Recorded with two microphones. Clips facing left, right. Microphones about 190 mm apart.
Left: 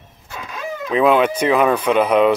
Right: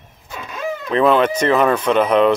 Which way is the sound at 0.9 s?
10° left (ahead or behind).